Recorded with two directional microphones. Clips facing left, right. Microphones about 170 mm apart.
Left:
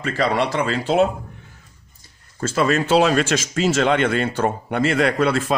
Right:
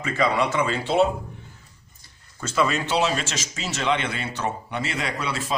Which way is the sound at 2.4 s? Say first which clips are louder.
Left 4 dB; 50° left (ahead or behind).